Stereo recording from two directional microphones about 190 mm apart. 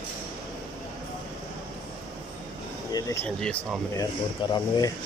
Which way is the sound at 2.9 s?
15° left (ahead or behind).